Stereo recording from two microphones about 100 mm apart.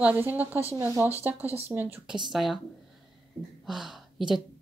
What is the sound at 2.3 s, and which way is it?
Speech, centre (ahead or behind).